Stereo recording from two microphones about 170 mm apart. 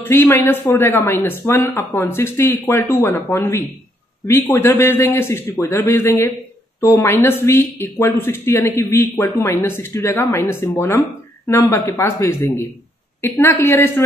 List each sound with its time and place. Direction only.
0.0 s speech: 15° left (ahead or behind)